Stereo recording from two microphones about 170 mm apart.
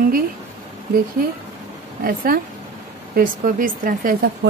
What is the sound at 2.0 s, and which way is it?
Speech, 60° right (ahead or behind).